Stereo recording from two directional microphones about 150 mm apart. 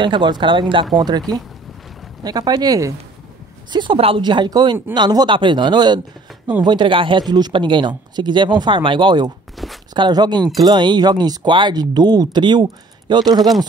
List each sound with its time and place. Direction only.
0.0 s speech: 30° right (ahead or behind)
2.2 s speech: 25° right (ahead or behind)
9.6 s walk: centre (ahead or behind)
9.9 s speech: 30° right (ahead or behind)